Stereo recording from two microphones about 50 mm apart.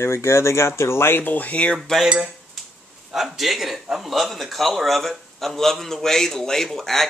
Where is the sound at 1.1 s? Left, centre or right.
Left.